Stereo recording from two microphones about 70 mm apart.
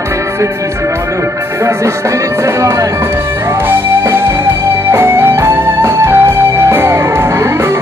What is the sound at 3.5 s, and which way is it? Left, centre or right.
Music, right.